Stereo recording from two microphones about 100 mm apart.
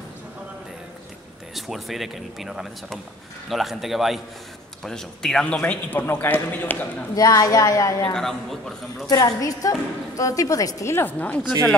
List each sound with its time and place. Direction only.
1.5 s a man's voice: centre (ahead or behind); by 7.1 s 15° left (ahead or behind)
7.2 s a woman's voice: 35° left (ahead or behind)
8.1 s speech: 5° left (ahead or behind)
9.1 s a woman's voice: 35° left (ahead or behind); by 11.4 s 15° left (ahead or behind)